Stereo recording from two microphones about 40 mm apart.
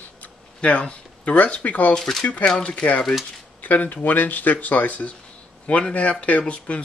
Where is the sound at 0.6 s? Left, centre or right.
Left.